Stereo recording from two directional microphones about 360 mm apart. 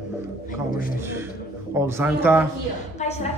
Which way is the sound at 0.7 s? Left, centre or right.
Left.